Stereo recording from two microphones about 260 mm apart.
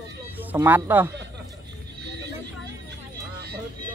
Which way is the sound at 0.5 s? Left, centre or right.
Centre.